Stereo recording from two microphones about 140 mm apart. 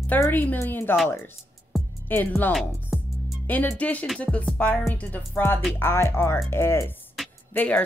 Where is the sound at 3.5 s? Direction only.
15° left (ahead or behind).